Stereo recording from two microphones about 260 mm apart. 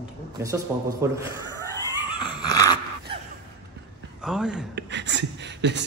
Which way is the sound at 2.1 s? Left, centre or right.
Centre.